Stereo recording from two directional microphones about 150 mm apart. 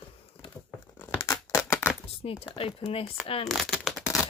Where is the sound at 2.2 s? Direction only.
40° left (ahead or behind).